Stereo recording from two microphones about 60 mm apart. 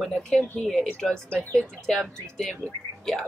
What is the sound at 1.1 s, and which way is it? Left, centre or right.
Speech, right.